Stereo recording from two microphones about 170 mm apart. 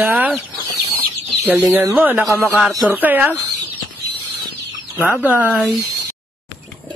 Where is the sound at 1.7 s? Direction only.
10° right (ahead or behind).